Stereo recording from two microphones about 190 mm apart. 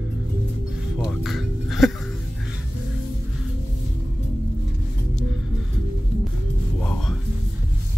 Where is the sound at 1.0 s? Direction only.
Centre (ahead or behind).